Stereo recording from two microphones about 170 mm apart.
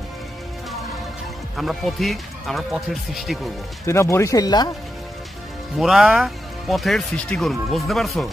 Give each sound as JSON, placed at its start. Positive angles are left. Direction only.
{"t": 1.6, "sound": "speech", "side_deg": 0}
{"t": 3.8, "sound": "speech", "side_deg": 15}
{"t": 5.8, "sound": "speech", "side_deg": 0}